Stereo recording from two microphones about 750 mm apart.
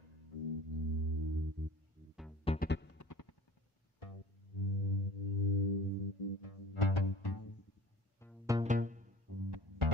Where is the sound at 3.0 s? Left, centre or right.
Left.